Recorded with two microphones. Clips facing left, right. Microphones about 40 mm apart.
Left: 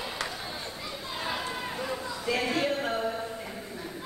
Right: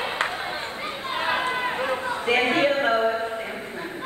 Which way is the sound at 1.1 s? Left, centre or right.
Right.